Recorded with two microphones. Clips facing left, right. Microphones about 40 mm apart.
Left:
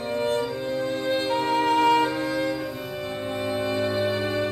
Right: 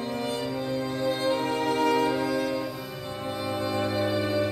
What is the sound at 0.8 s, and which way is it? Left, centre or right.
Music, left.